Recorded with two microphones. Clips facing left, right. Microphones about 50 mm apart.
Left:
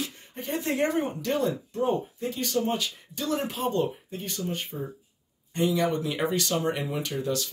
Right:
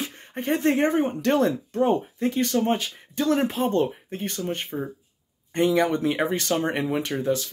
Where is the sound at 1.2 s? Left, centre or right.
Right.